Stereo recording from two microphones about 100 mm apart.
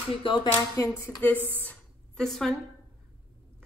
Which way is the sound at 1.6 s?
15° left (ahead or behind).